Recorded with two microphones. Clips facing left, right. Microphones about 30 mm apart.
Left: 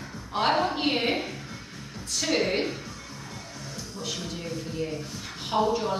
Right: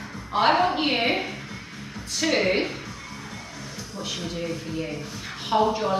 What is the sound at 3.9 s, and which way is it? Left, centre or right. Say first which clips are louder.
A woman's voice: right 4 dB; centre.